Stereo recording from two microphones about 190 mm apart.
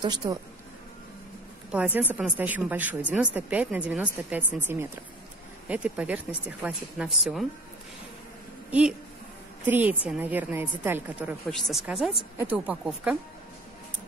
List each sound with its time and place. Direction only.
0.0 s speech: 25° right (ahead or behind)
1.7 s a woman's voice: 10° right (ahead or behind)
8.6 s a sound: 5° right (ahead or behind)
9.7 s a woman's voice: 10° right (ahead or behind)